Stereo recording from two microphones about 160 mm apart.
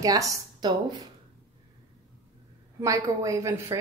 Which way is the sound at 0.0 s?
20° right (ahead or behind).